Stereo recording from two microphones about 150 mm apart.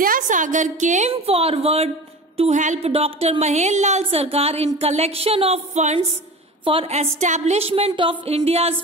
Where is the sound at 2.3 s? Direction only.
50° right (ahead or behind).